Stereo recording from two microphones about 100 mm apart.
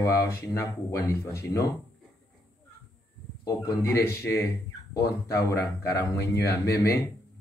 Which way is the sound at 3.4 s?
35° left (ahead or behind).